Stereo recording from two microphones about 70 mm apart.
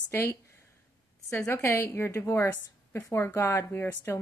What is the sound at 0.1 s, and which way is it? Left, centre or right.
Speech, left.